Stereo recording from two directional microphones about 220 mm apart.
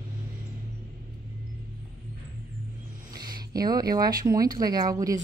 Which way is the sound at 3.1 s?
20° right (ahead or behind).